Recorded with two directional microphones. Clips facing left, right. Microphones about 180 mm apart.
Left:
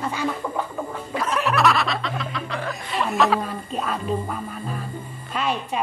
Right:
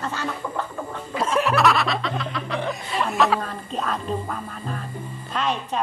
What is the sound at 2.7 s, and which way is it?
Snicker, centre (ahead or behind).